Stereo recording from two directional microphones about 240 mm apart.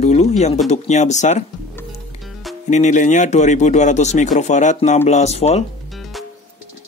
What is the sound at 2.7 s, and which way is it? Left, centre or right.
Speech, left.